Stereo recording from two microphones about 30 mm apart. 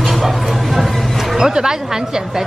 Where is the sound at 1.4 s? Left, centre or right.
Right.